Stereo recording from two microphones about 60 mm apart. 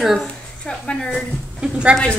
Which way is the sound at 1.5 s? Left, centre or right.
Centre.